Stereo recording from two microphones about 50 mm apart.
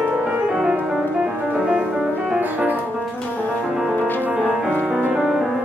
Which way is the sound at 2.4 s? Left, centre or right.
Right.